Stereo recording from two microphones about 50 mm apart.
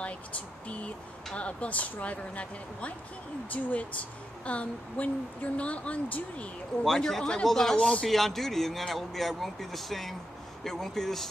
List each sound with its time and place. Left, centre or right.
0.7 s speech: left
6.8 s a man's voice: centre
7.7 s speech: centre
8.1 s a man's voice: centre